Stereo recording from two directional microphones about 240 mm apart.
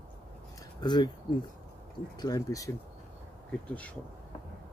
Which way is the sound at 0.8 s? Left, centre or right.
Centre.